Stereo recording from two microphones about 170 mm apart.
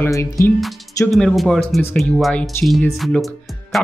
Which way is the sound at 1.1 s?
Centre (ahead or behind).